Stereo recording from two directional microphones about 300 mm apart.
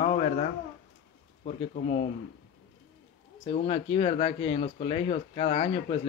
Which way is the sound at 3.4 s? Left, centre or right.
Centre.